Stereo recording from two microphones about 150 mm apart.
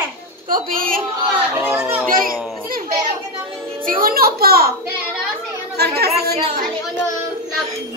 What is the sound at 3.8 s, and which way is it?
Speech, 70° right (ahead or behind).